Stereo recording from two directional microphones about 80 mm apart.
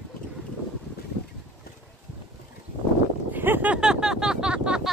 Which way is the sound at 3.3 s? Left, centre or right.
Right.